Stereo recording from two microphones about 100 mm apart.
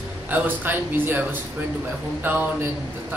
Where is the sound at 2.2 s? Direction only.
20° right (ahead or behind).